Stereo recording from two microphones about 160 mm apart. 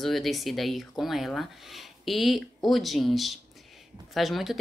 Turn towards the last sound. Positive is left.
turn(degrees=0)  # may be behind; listen again after turning